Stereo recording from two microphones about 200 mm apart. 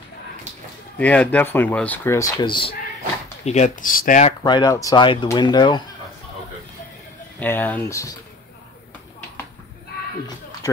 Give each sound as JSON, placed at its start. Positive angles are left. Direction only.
{"t": 0.9, "sound": "speech", "side_deg": 5}
{"t": 3.4, "sound": "speech", "side_deg": 35}
{"t": 4.4, "sound": "speech", "side_deg": 20}
{"t": 7.3, "sound": "speech", "side_deg": 10}